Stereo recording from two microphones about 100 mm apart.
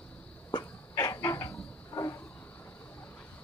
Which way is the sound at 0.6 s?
30° left (ahead or behind).